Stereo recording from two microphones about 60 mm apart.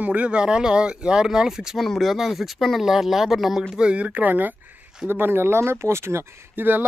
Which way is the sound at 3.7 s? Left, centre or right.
Centre.